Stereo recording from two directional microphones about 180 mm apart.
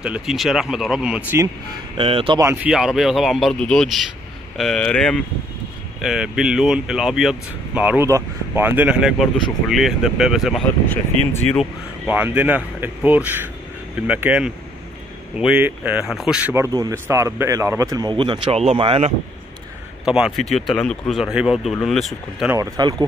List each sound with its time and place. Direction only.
0.0 s speech: 5° right (ahead or behind)
2.0 s speech: 30° right (ahead or behind)
2.4 s speech: 10° right (ahead or behind); by 11.6 s 5° left (ahead or behind)
12.1 s speech: 10° right (ahead or behind); by 19.1 s 35° right (ahead or behind)
20.1 s speech: 5° right (ahead or behind)
22.5 s speech: 20° right (ahead or behind)